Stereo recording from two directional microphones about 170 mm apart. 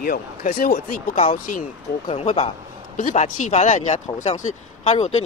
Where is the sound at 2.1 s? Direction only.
35° left (ahead or behind).